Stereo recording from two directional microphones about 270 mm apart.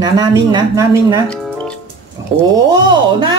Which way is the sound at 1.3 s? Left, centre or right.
Centre.